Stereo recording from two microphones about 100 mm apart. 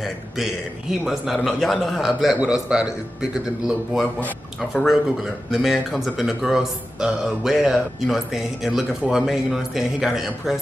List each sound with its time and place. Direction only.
0.0 s speech: centre (ahead or behind)